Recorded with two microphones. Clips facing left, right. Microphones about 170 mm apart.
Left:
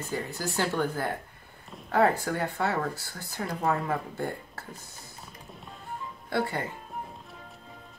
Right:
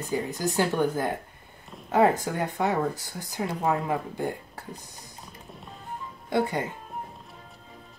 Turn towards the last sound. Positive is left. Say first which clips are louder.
# right 4 dB
turn(degrees=-20)  # may be behind; listen again after turning